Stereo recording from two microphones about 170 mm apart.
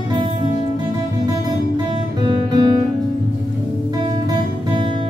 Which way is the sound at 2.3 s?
30° right (ahead or behind).